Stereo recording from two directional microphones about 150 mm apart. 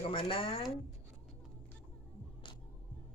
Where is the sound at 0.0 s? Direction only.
40° left (ahead or behind).